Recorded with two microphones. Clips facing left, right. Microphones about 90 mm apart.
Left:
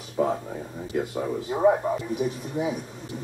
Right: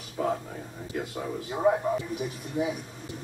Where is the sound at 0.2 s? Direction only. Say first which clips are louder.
Left 4 dB; 15° left (ahead or behind).